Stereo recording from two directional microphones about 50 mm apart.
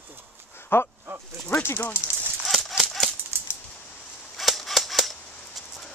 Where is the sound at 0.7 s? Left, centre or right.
Left.